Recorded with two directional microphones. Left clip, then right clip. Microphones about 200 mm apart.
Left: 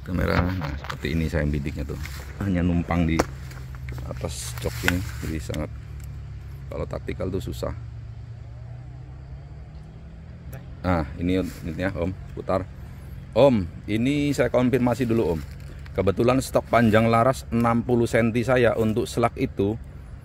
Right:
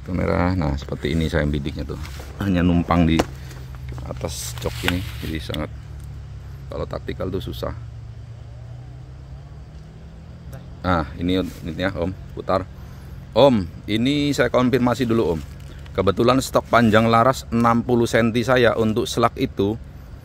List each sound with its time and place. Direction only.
0.1 s speech: 5° right (ahead or behind)
2.7 s speech: 15° right (ahead or behind)
4.0 s speech: 5° right (ahead or behind)
6.7 s speech: 5° left (ahead or behind)
10.5 s speech: 5° left (ahead or behind)